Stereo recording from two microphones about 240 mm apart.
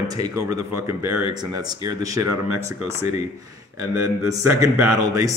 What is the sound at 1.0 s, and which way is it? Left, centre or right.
Speech, right.